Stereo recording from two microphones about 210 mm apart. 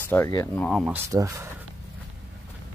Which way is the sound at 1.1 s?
15° right (ahead or behind).